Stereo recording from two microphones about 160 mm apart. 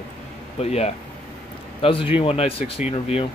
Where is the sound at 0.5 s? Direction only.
40° left (ahead or behind).